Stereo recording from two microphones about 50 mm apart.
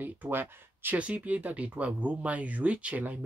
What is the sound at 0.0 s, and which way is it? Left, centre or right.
Speech, right.